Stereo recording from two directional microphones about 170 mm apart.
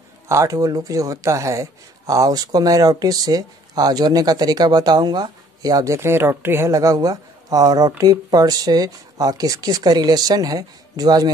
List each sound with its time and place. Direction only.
0.3 s speech: 20° right (ahead or behind)